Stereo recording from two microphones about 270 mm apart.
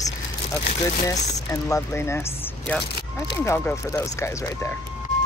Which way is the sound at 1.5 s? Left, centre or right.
Centre.